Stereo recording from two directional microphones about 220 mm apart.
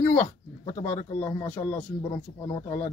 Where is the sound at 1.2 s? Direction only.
15° left (ahead or behind).